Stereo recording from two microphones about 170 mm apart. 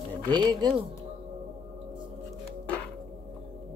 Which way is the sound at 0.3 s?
25° right (ahead or behind).